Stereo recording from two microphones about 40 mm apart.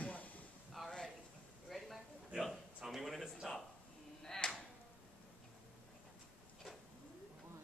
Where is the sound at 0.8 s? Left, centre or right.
Centre.